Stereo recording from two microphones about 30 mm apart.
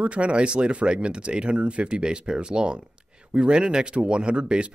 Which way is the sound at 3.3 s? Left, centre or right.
Right.